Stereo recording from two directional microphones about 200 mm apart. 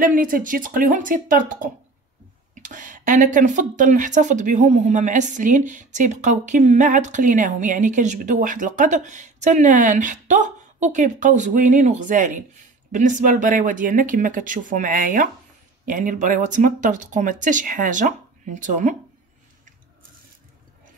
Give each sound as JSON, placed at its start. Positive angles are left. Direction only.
{"t": 0.0, "sound": "speech", "side_deg": -45}